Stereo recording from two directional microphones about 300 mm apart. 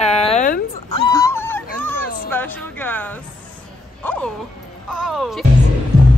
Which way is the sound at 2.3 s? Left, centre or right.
Centre.